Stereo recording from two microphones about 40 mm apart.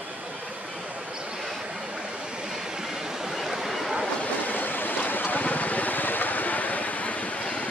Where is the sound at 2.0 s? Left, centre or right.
Centre.